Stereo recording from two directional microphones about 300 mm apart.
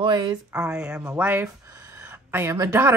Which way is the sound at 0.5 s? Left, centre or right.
Centre.